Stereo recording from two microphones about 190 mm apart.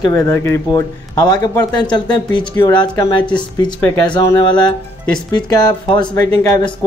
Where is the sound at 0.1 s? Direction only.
15° left (ahead or behind).